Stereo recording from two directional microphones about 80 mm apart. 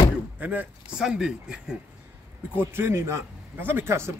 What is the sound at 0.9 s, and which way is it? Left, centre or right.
Speech, centre.